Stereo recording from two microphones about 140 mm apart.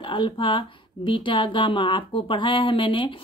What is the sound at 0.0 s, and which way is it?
Speech, 35° left (ahead or behind).